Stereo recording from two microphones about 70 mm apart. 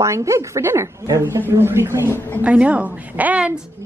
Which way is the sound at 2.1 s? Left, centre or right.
Left.